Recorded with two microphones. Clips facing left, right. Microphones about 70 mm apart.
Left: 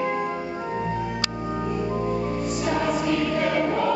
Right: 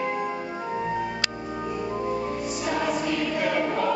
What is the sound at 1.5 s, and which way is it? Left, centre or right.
Choir, centre.